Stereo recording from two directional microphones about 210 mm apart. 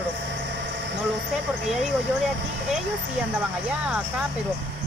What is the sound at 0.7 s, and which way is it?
Vehicle, 55° right (ahead or behind).